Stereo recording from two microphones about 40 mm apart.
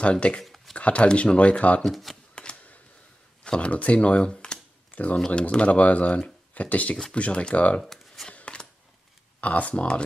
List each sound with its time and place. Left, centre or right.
0.0 s speech: left
0.4 s a sound: centre
0.7 s speech: left
1.9 s speech: centre
2.4 s typewriter: left
3.4 s speech: left
4.9 s speech: left
8.3 s a sound: left
9.4 s speech: left